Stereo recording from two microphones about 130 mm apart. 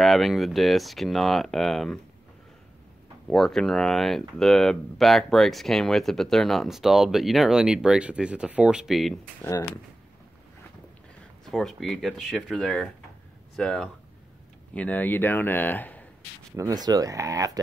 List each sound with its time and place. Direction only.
0.0 s speech: centre (ahead or behind)
3.3 s speech: 5° left (ahead or behind)
9.4 s speech: 25° left (ahead or behind)
11.9 s a man's voice: centre (ahead or behind)
16.5 s speech: 30° right (ahead or behind)